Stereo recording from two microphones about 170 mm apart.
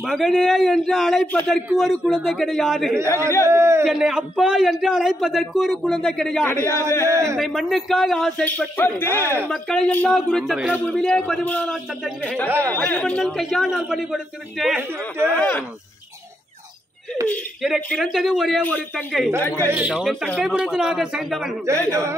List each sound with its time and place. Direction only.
0.0 s a man's voice: centre (ahead or behind)
3.0 s a man's voice: 15° right (ahead or behind)
3.8 s a man's voice: 5° right (ahead or behind)
6.6 s a man's voice: 15° right (ahead or behind)
7.3 s a man's voice: centre (ahead or behind)
9.5 s a man's voice: centre (ahead or behind)
12.4 s a man's voice: 10° right (ahead or behind)
12.7 s a man's voice: 10° left (ahead or behind)
15.2 s speech: 10° left (ahead or behind)
17.3 s a man's voice: 5° left (ahead or behind)
19.7 s a man's voice: 10° right (ahead or behind)
20.0 s a man's voice: centre (ahead or behind)